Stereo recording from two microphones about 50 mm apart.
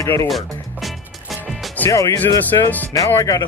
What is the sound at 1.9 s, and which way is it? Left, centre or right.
Speech, left.